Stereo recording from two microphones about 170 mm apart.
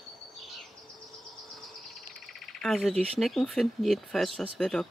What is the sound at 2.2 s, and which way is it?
Speech, centre (ahead or behind).